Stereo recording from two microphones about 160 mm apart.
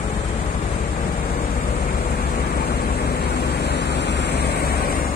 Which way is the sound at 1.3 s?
65° left (ahead or behind).